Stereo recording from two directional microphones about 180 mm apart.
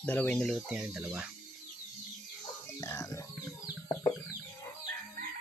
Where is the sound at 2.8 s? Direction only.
20° left (ahead or behind).